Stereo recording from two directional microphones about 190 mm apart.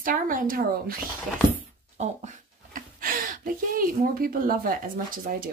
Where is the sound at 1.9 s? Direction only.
40° right (ahead or behind).